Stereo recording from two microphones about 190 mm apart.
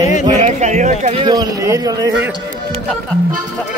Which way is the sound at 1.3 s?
20° right (ahead or behind).